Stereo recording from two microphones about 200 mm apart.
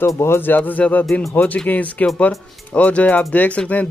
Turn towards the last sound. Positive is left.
turn(degrees=5)  # may be behind; listen again after turning